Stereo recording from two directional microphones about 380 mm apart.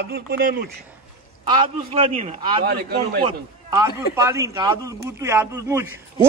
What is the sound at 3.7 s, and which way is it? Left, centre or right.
A man's voice, centre.